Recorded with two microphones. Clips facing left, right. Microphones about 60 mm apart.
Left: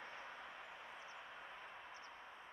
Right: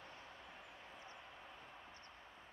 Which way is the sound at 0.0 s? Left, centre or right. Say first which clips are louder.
Left 4 dB; left.